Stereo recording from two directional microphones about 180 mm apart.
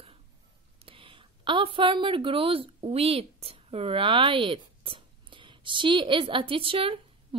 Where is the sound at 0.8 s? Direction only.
30° right (ahead or behind).